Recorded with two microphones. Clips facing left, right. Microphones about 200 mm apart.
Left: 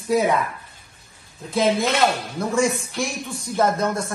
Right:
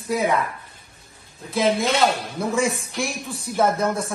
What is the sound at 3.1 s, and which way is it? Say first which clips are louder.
Speech: left 1 dB; 30° right (ahead or behind).